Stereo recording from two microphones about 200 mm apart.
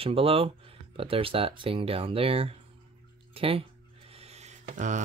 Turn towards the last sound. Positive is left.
turn(degrees=-40)  # may be behind; listen again after turning